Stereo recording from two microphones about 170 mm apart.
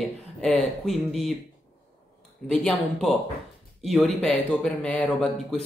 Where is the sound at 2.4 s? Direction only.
5° left (ahead or behind).